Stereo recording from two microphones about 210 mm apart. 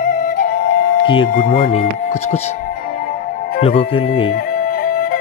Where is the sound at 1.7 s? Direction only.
30° left (ahead or behind).